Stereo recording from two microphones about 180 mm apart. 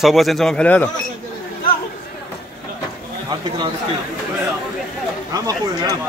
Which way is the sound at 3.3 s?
25° right (ahead or behind).